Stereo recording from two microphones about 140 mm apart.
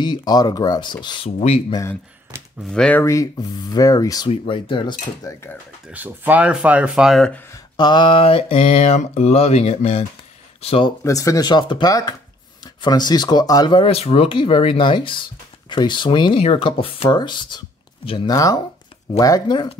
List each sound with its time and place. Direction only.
0.0 s speech: 30° left (ahead or behind)
2.7 s speech: 5° left (ahead or behind)
3.0 s speech: 20° left (ahead or behind)
4.3 s speech: 35° left (ahead or behind)
5.9 s speech: 10° right (ahead or behind)
7.5 s mantra: 30° left (ahead or behind); by 10.0 s 50° left (ahead or behind)
10.6 s speech: 45° left (ahead or behind)
11.1 s speech: 25° left (ahead or behind)
13.8 s speech: 45° left (ahead or behind); by 19.7 s 30° left (ahead or behind)